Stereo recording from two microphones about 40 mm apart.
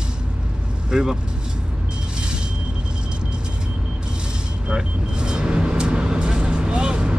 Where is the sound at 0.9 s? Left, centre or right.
Centre.